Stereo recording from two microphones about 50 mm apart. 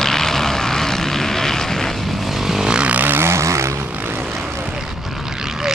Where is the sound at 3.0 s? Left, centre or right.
Right.